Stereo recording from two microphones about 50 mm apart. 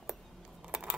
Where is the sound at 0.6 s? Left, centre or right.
Centre.